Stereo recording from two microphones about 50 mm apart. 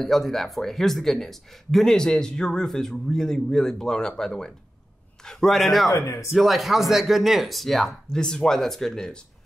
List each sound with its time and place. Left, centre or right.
0.0 s speech: centre
5.9 s speech: left
6.3 s speech: centre